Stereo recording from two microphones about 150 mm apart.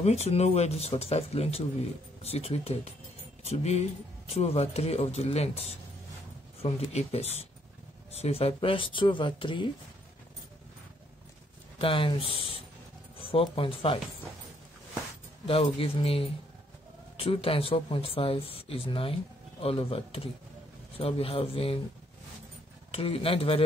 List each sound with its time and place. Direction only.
0.0 s speech: 45° left (ahead or behind)
11.8 s speech: 35° left (ahead or behind)
15.4 s speech: 40° left (ahead or behind)
22.8 s speech: 40° left (ahead or behind)